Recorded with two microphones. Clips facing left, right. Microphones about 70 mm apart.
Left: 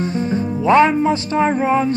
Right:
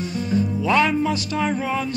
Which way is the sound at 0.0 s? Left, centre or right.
Left.